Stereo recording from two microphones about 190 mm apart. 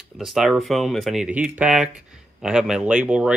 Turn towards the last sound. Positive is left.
turn(degrees=-5)  # may be behind; listen again after turning